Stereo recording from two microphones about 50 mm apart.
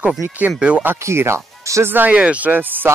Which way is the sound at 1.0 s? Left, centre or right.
Right.